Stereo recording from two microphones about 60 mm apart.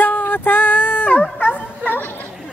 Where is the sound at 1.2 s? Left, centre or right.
Left.